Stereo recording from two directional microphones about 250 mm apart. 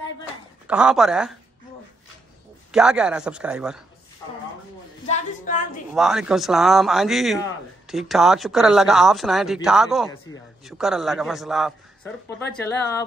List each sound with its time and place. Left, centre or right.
0.7 s speech: centre
2.7 s speech: centre
5.0 s a sound: left
5.9 s speech: centre